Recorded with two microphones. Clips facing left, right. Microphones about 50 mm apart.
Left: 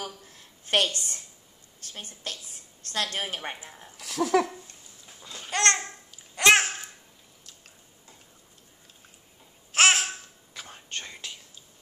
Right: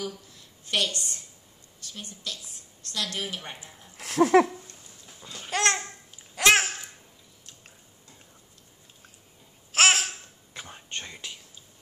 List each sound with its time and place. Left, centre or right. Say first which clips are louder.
0.0 s a sound: right 3 dB; left
2.3 s a woman's voice: left 1 dB; left
3.9 s speech: right 5 dB; right
5.2 s babbling: left 1 dB; centre
9.7 s babbling: even; centre
10.7 s whispering: even; centre